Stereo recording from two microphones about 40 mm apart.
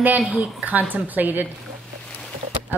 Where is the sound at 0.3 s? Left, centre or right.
Right.